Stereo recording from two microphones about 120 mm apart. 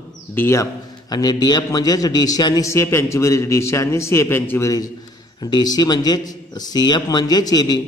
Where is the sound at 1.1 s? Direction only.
35° left (ahead or behind).